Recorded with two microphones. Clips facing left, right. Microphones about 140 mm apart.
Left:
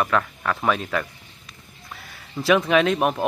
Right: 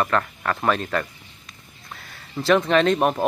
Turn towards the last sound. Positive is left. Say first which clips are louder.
# right 1 dB
turn(degrees=0)  # may be behind; listen again after turning